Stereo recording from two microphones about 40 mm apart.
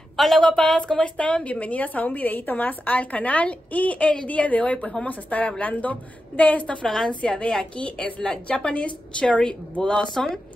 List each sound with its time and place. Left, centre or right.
0.4 s a woman's voice: centre
0.9 s a woman's voice: left
6.8 s a woman's voice: centre
7.2 s a woman's voice: left
10.1 s a woman's voice: centre